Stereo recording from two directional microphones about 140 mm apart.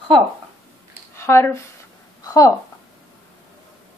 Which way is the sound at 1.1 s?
20° left (ahead or behind).